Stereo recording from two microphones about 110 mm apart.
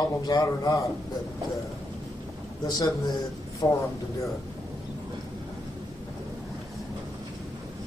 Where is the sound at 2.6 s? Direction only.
35° left (ahead or behind).